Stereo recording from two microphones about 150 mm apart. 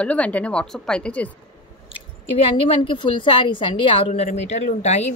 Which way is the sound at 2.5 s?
35° left (ahead or behind).